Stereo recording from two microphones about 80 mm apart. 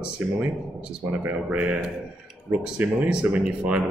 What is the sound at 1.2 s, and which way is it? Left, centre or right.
Speech, right.